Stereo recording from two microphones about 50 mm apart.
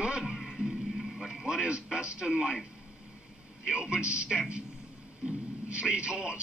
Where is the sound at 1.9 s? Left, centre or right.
Centre.